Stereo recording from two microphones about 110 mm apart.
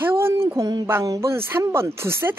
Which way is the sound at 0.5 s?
30° right (ahead or behind).